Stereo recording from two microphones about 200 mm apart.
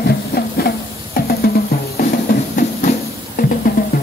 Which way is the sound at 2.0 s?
45° left (ahead or behind).